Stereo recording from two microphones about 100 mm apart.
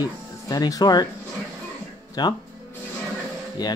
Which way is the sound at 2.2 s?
45° left (ahead or behind).